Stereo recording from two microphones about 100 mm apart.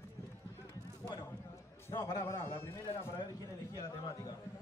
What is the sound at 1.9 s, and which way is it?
A man's voice, 35° left (ahead or behind).